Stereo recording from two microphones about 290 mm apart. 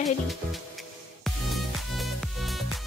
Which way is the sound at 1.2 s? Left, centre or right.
Centre.